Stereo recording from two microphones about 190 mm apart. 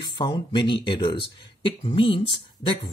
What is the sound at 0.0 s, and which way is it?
Speech, 25° left (ahead or behind).